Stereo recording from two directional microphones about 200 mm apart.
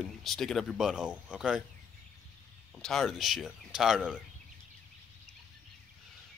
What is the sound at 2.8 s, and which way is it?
Speech, centre (ahead or behind).